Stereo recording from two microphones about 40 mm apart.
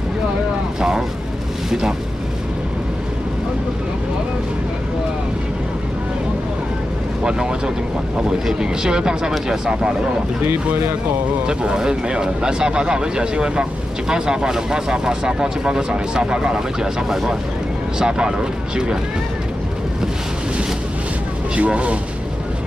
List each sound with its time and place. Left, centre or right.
0.7 s speech: centre
7.2 s speech: centre
11.4 s speech: right
21.5 s speech: right